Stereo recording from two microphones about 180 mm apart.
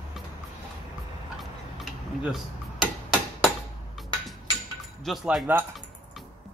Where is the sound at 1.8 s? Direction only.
Centre (ahead or behind).